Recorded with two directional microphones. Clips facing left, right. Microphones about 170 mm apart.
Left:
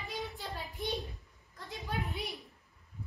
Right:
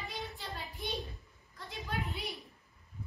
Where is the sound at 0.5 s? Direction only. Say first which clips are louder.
Left 3 dB; 20° left (ahead or behind).